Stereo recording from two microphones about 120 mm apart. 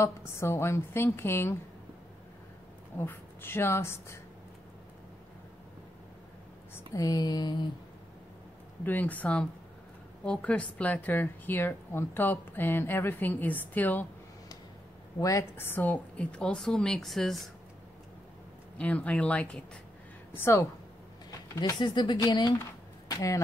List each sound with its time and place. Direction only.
0.0 s a woman's voice: 20° left (ahead or behind)
3.0 s a woman's voice: 20° left (ahead or behind)
6.9 s speech: 30° left (ahead or behind)
8.8 s speech: 15° left (ahead or behind)
15.1 s speech: 25° left (ahead or behind); by 17.5 s centre (ahead or behind)
18.8 s a woman's voice: 10° left (ahead or behind)
21.5 s speech: 35° left (ahead or behind)
22.6 s a sound: 25° left (ahead or behind)